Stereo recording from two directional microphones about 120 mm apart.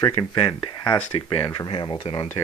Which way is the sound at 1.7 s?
45° left (ahead or behind).